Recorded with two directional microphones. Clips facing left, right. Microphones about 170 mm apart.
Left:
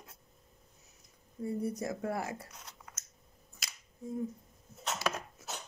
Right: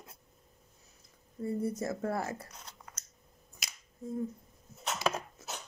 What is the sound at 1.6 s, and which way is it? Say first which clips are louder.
Speech: right 2 dB; 15° left (ahead or behind).